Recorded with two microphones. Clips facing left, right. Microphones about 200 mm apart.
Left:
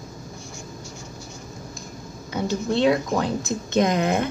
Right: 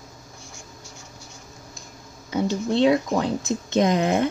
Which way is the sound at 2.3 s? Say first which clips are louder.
Right 1 dB; 25° right (ahead or behind).